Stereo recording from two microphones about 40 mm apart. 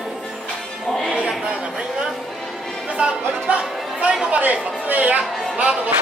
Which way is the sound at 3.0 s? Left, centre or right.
Right.